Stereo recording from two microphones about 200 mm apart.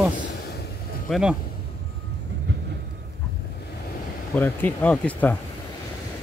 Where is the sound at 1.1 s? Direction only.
5° right (ahead or behind).